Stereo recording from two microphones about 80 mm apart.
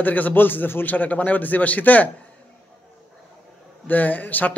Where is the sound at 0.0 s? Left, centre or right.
Left.